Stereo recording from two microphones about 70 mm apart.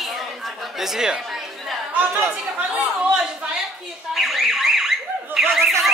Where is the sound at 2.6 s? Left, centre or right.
Right.